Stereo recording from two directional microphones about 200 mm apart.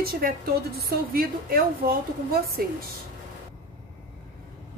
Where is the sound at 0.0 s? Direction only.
50° right (ahead or behind).